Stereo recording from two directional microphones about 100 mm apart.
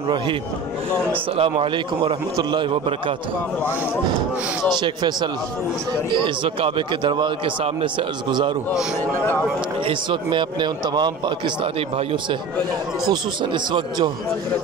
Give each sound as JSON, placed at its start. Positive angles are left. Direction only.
{"t": 1.3, "sound": "a man's voice", "side_deg": -75}
{"t": 2.0, "sound": "speech", "side_deg": -55}
{"t": 4.7, "sound": "a man's voice", "side_deg": -50}
{"t": 9.8, "sound": "a man's voice", "side_deg": -50}
{"t": 13.1, "sound": "a man's voice", "side_deg": -50}